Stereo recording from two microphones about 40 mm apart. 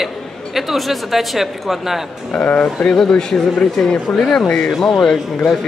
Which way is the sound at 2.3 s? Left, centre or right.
Left.